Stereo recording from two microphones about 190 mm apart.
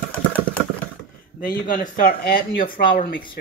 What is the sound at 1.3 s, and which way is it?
A man's voice, 45° left (ahead or behind).